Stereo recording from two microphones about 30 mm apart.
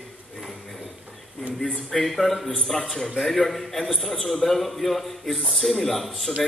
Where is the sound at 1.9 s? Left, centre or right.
Centre.